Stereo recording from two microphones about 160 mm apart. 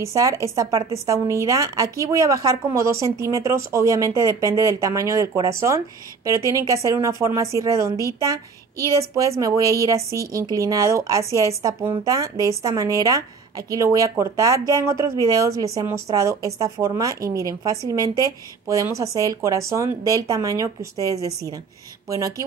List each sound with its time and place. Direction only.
0.0 s a woman's voice: 20° right (ahead or behind)